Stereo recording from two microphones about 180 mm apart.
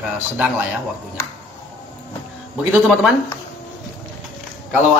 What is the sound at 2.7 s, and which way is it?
Speech, 5° right (ahead or behind).